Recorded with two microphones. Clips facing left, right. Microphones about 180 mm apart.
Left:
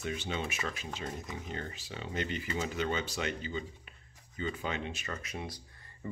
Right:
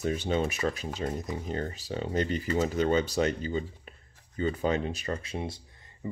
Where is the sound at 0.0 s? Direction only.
40° right (ahead or behind).